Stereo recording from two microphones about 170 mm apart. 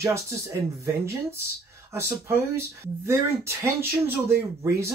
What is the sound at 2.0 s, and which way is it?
Speech, 15° right (ahead or behind).